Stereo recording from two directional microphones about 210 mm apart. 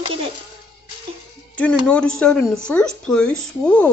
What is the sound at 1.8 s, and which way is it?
Speech, 5° left (ahead or behind).